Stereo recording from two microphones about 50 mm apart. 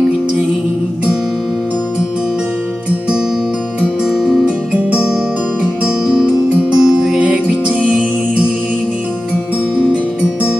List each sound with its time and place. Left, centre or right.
4.0 s music: centre
5.9 s music: centre
7.2 s music: right
9.3 s music: right